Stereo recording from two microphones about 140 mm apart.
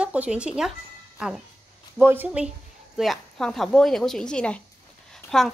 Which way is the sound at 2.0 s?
15° right (ahead or behind).